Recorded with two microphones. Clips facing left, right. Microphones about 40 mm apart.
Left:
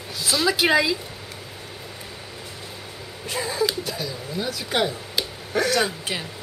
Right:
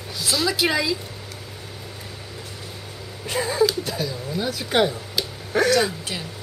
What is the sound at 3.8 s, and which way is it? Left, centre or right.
Bird, centre.